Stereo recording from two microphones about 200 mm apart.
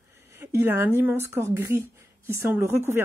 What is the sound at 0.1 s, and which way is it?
Speech, 15° right (ahead or behind).